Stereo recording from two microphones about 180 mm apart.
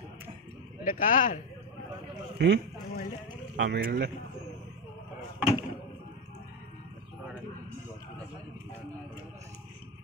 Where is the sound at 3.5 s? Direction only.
80° right.